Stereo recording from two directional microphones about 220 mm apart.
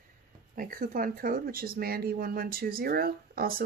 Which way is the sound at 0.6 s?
40° right (ahead or behind).